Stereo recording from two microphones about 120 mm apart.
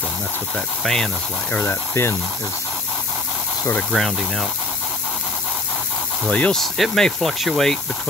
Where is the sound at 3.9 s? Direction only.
Centre (ahead or behind).